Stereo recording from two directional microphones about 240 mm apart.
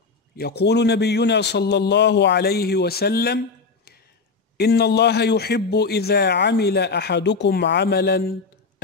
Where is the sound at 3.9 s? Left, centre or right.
Left.